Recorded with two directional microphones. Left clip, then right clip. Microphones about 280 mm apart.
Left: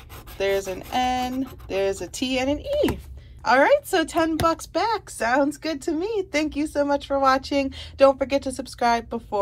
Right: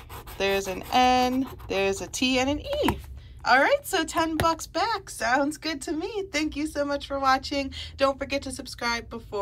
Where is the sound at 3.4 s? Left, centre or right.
Centre.